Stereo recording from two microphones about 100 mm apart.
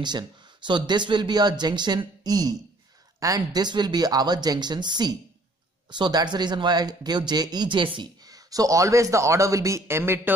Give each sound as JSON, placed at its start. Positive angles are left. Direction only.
{"t": 0.7, "sound": "speech", "side_deg": -50}
{"t": 8.3, "sound": "a man's voice", "side_deg": -35}